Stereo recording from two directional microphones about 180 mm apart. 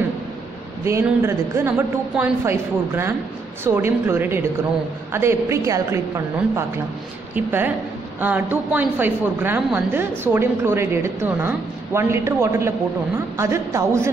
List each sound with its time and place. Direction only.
0.8 s a woman's voice: 15° right (ahead or behind)